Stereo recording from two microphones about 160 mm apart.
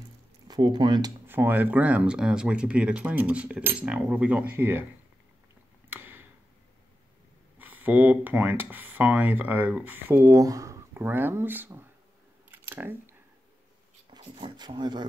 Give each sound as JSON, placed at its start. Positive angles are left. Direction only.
{"t": 0.5, "sound": "speech", "side_deg": -30}
{"t": 1.2, "sound": "speech", "side_deg": -15}
{"t": 5.9, "sound": "tick-tock", "side_deg": -10}
{"t": 7.5, "sound": "speech", "side_deg": -10}
{"t": 12.4, "sound": "a sound", "side_deg": -10}
{"t": 14.1, "sound": "speech", "side_deg": -30}